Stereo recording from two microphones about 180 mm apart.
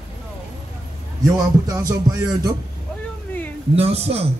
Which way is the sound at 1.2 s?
20° right (ahead or behind).